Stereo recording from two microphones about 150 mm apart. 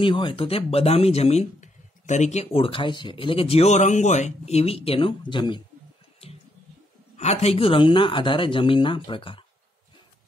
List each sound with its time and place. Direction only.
0.0 s speech: 35° left (ahead or behind)
7.2 s speech: 50° left (ahead or behind)